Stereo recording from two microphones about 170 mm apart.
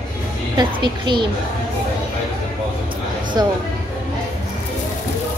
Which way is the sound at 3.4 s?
25° right (ahead or behind).